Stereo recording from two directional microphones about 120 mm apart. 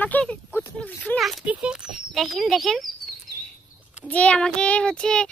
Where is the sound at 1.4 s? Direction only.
10° right (ahead or behind).